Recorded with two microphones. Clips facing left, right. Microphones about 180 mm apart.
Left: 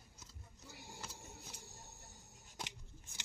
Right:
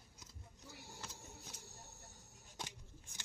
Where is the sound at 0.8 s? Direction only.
10° left (ahead or behind).